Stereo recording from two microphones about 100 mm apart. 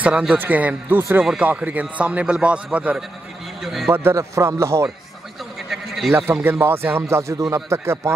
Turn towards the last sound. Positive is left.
turn(degrees=-30)  # may be behind; listen again after turning